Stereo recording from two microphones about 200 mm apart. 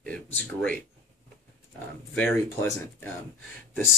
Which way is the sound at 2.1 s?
10° left (ahead or behind).